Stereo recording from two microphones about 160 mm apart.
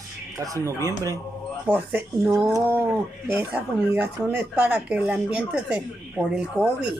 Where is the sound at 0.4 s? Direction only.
20° right (ahead or behind).